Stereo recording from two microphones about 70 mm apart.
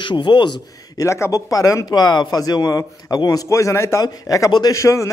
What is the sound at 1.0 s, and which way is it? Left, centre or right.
Speech, left.